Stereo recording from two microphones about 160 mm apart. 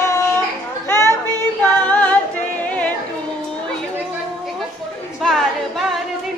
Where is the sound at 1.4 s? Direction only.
10° left (ahead or behind).